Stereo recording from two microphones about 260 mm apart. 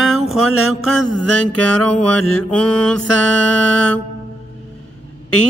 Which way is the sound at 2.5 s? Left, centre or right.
Centre.